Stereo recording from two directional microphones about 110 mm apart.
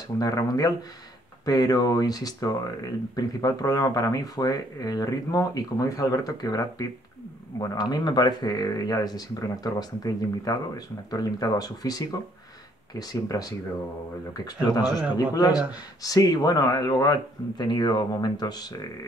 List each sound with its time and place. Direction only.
0.2 s speech: 35° left (ahead or behind)